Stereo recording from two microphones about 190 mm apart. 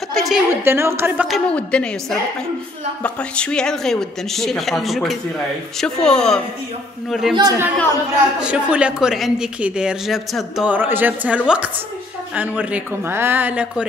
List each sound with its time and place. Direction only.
0.1 s a sound: centre (ahead or behind)
0.5 s a woman's voice: 10° right (ahead or behind)
7.3 s speech: 20° right (ahead or behind)
8.4 s a woman's voice: 5° right (ahead or behind)